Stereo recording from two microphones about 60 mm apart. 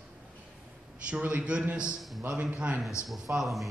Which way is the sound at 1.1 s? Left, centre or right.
Right.